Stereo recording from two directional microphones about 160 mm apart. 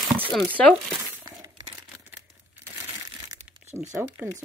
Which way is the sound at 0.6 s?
5° left (ahead or behind).